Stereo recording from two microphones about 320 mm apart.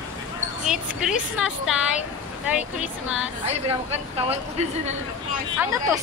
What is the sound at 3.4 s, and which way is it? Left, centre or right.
A woman's voice, centre.